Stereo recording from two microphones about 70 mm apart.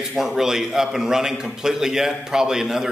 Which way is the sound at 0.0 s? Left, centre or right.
Centre.